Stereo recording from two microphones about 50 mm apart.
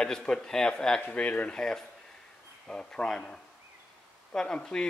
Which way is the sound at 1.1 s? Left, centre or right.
Left.